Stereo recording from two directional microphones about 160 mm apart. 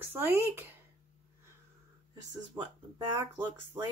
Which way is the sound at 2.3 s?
25° right (ahead or behind).